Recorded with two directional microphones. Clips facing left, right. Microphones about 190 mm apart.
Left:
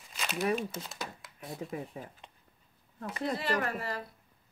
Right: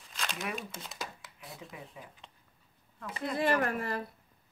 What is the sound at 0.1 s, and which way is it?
Crumpling, 5° left (ahead or behind).